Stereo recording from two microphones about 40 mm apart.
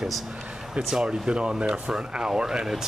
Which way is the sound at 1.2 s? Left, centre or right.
Right.